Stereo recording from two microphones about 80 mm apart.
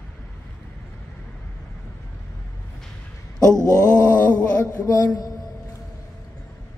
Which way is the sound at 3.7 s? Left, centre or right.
Centre.